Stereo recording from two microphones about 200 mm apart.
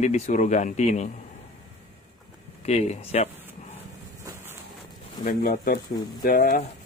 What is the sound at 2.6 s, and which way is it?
Speech, 35° left (ahead or behind).